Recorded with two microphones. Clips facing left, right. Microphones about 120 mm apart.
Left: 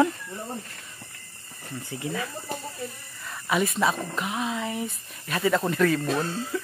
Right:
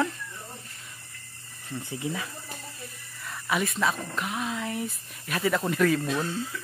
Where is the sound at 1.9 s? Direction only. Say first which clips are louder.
Left 2 dB; 20° right (ahead or behind).